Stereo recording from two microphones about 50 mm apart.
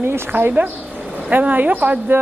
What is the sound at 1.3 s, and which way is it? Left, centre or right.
Speech, right.